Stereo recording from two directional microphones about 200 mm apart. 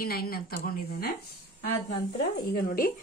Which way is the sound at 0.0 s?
50° left (ahead or behind).